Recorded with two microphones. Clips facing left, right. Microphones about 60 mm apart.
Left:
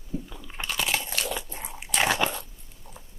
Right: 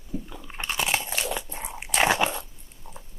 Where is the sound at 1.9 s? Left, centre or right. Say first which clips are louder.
Right 2 dB; centre.